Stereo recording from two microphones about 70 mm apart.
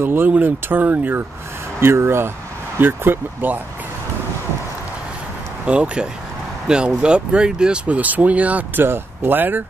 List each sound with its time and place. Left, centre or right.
0.0 s speech: right
1.8 s speech: right
5.7 s speech: centre